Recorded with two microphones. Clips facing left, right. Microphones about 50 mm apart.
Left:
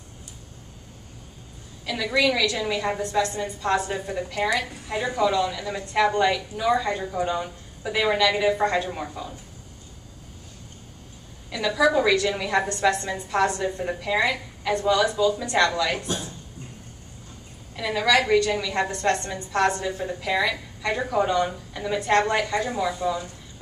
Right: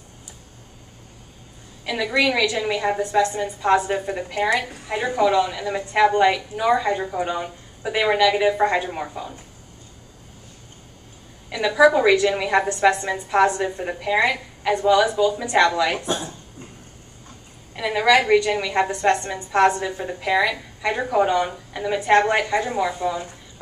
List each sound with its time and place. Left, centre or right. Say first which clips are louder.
2.1 s a woman's voice: right 2 dB; centre
11.5 s a woman's voice: right 5 dB; centre
17.7 s a woman's voice: right 4 dB; centre